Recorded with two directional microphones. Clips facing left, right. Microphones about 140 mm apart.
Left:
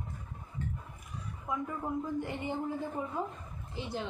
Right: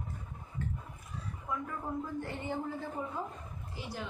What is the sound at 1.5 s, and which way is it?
A woman's voice, 15° left (ahead or behind).